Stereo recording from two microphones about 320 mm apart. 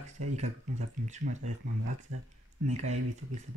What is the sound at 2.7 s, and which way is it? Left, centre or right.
Speech, right.